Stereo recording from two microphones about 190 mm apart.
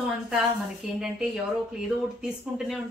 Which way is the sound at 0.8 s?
5° right (ahead or behind).